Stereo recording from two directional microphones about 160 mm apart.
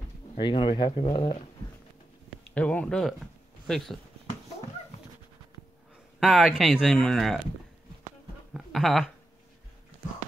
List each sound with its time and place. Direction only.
0.4 s speech: 30° left (ahead or behind)
2.5 s speech: 10° left (ahead or behind)
6.1 s speech: centre (ahead or behind)
8.5 s speech: centre (ahead or behind)